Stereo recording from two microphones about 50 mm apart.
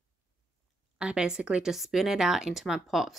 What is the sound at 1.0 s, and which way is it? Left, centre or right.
Speech, centre.